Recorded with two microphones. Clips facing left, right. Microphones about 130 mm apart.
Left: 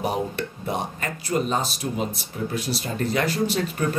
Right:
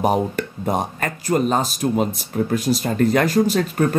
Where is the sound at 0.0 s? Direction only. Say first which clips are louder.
Right 6 dB; 45° right (ahead or behind).